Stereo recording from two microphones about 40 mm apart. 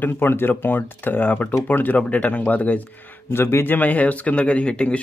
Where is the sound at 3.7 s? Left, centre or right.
Left.